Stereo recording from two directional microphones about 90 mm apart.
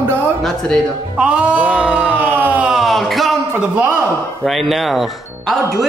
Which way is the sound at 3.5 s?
20° right (ahead or behind).